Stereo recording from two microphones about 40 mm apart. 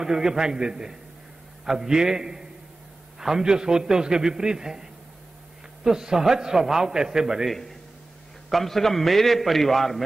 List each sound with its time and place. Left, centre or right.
0.0 s a man's voice: centre
5.9 s a man's voice: centre
8.5 s a man's voice: centre